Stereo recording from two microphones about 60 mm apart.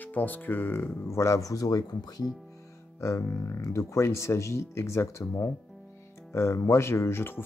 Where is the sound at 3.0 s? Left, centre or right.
Left.